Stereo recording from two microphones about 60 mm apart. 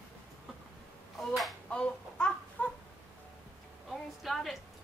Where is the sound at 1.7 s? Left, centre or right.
Centre.